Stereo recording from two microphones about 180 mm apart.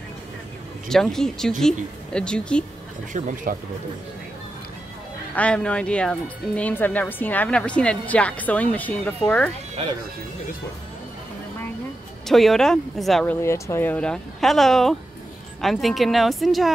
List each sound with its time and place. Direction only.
0.8 s speech: centre (ahead or behind)
3.1 s speech: 45° right (ahead or behind)
5.3 s speech: 5° left (ahead or behind)
12.3 s speech: centre (ahead or behind)